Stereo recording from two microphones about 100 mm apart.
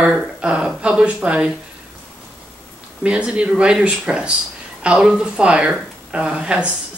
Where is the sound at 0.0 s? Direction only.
10° right (ahead or behind).